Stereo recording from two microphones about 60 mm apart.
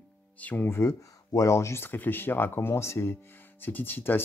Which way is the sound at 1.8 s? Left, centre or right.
Left.